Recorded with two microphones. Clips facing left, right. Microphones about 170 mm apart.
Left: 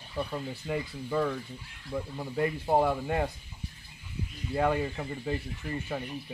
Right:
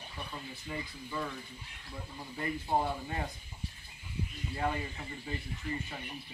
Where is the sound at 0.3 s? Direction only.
55° left (ahead or behind).